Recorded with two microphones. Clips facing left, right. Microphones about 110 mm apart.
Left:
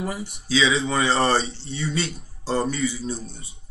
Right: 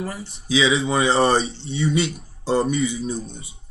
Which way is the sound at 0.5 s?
20° right (ahead or behind).